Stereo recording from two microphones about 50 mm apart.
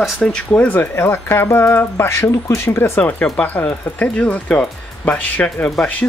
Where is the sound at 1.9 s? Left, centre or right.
Left.